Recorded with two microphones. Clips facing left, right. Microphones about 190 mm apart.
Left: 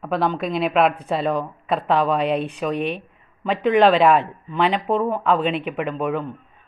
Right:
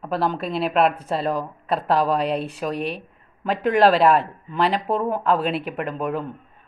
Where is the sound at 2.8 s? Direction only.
35° right (ahead or behind).